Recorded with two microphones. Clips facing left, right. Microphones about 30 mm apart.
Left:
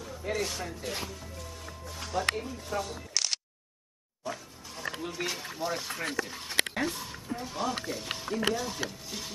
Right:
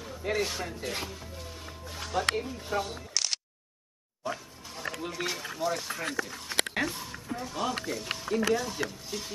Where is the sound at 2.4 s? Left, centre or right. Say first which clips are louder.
Right 2 dB; centre.